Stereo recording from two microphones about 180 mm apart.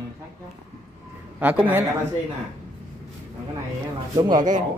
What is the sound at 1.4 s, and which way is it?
Speech, 10° right (ahead or behind).